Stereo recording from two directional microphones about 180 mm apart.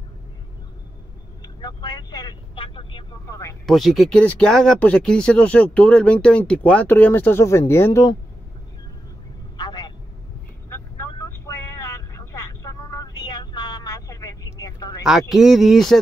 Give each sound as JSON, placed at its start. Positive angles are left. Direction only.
{"t": 1.6, "sound": "vehicle", "side_deg": 20}
{"t": 3.3, "sound": "speech", "side_deg": 15}
{"t": 3.6, "sound": "speech", "side_deg": 0}
{"t": 9.6, "sound": "vehicle", "side_deg": 25}
{"t": 10.7, "sound": "vehicle", "side_deg": 15}
{"t": 15.0, "sound": "speech", "side_deg": 0}